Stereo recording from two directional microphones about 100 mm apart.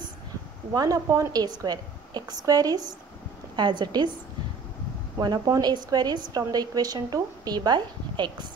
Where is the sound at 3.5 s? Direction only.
50° right (ahead or behind).